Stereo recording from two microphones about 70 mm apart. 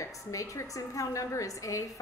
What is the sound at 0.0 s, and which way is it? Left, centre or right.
A woman's voice, left.